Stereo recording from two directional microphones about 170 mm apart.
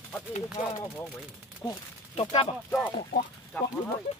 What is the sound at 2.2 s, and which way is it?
Speech, 35° left (ahead or behind).